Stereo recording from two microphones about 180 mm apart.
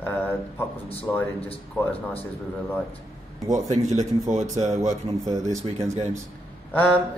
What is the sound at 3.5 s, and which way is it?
Speech, 40° right (ahead or behind).